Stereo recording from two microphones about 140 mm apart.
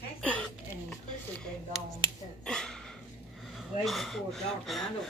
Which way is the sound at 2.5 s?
5° left (ahead or behind).